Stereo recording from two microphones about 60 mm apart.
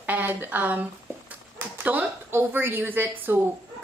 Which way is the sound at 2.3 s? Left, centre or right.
Right.